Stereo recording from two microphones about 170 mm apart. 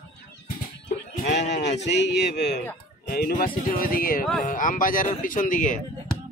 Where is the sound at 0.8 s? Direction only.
80° left.